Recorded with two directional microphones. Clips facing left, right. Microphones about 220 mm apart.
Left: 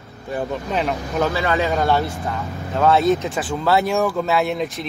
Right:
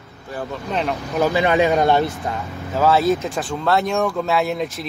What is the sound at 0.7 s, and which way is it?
Speech, centre (ahead or behind).